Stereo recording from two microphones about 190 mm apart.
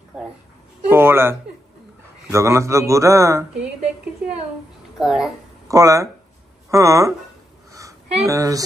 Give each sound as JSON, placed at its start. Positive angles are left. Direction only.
{"t": 0.1, "sound": "a man's voice", "side_deg": -5}
{"t": 4.9, "sound": "a child's voice", "side_deg": 0}
{"t": 5.7, "sound": "a man's voice", "side_deg": -15}
{"t": 8.3, "sound": "a man's voice", "side_deg": -20}